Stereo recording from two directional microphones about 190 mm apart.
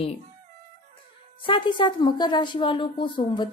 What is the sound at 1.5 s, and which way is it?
A woman's voice, 25° left (ahead or behind).